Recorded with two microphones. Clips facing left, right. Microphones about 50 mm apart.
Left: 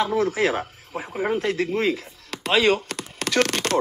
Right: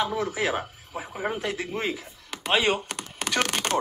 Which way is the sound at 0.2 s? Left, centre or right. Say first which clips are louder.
Left 5 dB; left.